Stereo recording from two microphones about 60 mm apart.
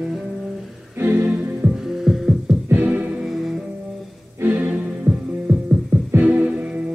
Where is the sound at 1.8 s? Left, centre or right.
Centre.